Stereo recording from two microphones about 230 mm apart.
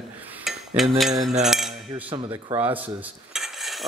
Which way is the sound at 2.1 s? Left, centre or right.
Right.